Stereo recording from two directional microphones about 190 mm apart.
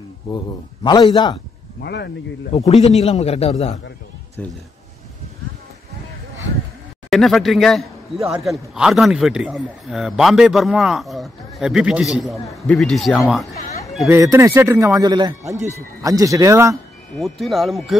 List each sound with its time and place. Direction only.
0.8 s a man's voice: 25° left (ahead or behind)
1.8 s speech: 60° left (ahead or behind)
2.5 s a man's voice: 35° left (ahead or behind)
4.4 s speech: 10° left (ahead or behind)
7.1 s a man's voice: centre (ahead or behind)
14.0 s a man's voice: 15° right (ahead or behind)
17.2 s a man's voice: centre (ahead or behind)